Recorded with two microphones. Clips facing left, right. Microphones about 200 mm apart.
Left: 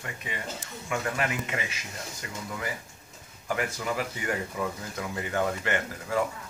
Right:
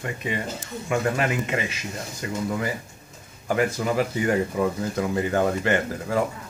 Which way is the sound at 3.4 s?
35° right (ahead or behind).